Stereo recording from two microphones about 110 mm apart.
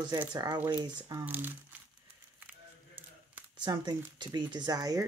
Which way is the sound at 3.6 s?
40° right (ahead or behind).